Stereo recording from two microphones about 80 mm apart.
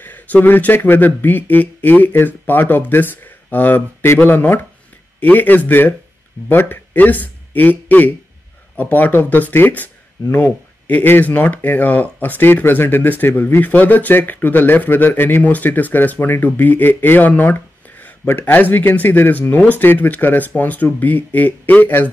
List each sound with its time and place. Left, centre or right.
0.0 s speech: left